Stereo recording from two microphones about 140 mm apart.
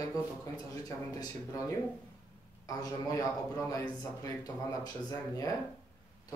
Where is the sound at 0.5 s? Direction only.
25° left (ahead or behind).